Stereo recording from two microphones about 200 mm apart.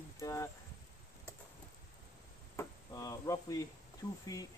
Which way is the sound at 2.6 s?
15° left (ahead or behind).